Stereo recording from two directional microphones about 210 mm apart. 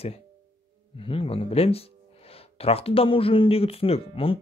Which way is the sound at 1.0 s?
25° left (ahead or behind).